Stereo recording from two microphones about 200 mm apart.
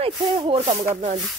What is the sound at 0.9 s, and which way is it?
Speech, 35° right (ahead or behind).